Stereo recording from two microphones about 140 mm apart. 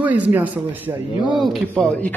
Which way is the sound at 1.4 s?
5° left (ahead or behind).